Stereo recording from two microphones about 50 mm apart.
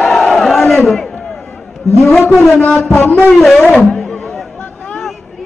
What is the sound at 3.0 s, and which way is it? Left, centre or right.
Speech, left.